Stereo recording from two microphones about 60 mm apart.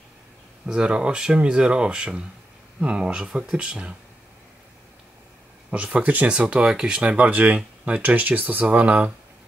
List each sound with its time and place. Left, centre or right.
0.7 s speech: centre
5.7 s speech: centre